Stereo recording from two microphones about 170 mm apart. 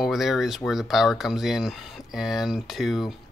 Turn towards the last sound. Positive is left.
turn(degrees=0)  # may be behind; listen again after turning